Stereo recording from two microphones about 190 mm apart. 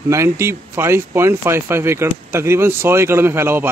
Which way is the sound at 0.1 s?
15° right (ahead or behind).